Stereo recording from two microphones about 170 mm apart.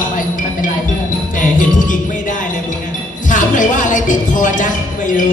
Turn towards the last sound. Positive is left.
turn(degrees=50)  # may be behind; listen again after turning